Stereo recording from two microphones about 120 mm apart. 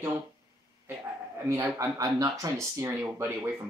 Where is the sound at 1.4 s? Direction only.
25° right (ahead or behind).